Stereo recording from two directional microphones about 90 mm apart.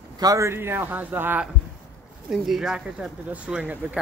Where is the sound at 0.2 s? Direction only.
45° right (ahead or behind).